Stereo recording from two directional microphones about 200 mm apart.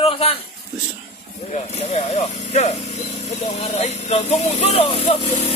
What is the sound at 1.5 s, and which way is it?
Speech, 30° left (ahead or behind).